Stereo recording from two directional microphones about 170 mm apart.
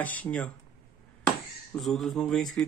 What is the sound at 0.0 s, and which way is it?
Speech, 10° left (ahead or behind).